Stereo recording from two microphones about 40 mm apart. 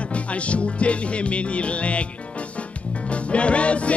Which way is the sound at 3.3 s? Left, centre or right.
Left.